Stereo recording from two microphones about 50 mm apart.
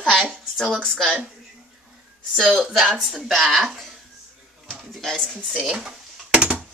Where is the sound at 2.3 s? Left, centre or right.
Centre.